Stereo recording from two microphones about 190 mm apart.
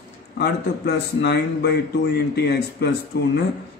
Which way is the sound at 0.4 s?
60° left (ahead or behind).